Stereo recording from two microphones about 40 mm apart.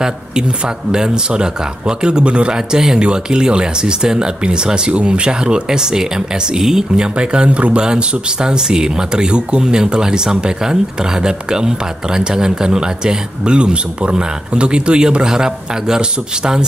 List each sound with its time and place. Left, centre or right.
0.9 s speech: centre
7.2 s speech: right